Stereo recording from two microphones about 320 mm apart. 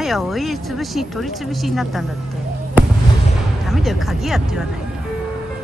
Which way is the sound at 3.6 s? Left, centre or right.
Centre.